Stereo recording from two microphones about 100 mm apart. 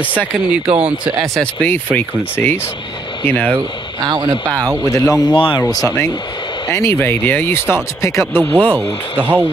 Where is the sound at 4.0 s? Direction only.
40° right (ahead or behind).